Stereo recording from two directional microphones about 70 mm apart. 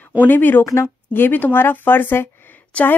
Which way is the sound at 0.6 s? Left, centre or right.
Left.